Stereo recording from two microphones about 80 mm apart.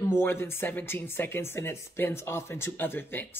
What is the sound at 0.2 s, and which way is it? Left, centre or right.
Speech, left.